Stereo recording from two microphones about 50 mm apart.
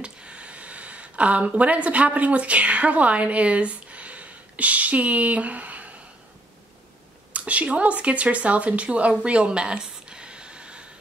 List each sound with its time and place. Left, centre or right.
0.0 s speech: right
7.3 s speech: right